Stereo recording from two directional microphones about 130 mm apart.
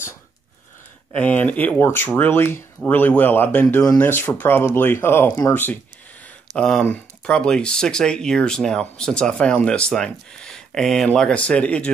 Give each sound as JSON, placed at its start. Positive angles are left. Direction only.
{"t": 1.1, "sound": "speech", "side_deg": 10}